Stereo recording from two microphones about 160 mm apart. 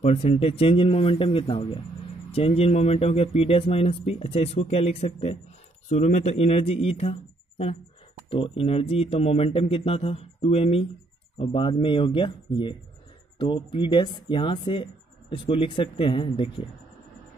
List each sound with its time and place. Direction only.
0.0 s speech: 40° left (ahead or behind)